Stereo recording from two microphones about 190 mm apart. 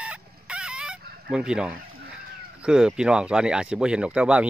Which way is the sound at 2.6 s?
5° right (ahead or behind).